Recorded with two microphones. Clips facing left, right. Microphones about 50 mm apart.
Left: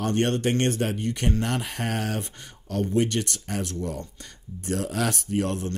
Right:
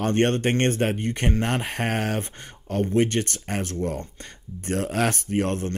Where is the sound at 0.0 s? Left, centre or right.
Right.